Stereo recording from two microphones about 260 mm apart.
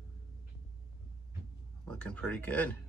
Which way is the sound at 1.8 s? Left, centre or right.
Centre.